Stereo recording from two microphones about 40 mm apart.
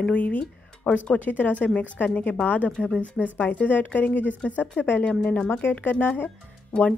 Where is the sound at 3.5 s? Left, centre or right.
Left.